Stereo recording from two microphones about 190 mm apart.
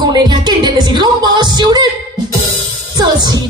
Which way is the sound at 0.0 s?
25° right (ahead or behind).